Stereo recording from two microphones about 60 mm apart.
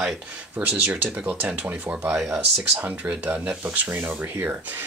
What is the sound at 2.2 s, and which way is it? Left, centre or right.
Speech, right.